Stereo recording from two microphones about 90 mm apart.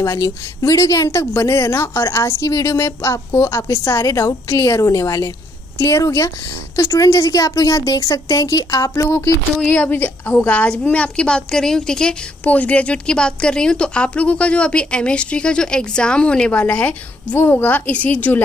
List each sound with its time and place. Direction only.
0.0 s a woman's voice: 35° left (ahead or behind)
9.2 s a woman's voice: 15° left (ahead or behind)